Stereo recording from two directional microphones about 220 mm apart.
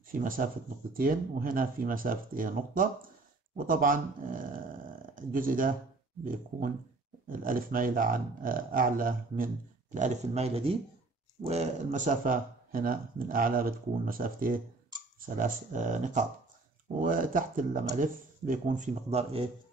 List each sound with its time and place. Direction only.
0.1 s speech: 40° right (ahead or behind)
7.2 s speech: 40° right (ahead or behind)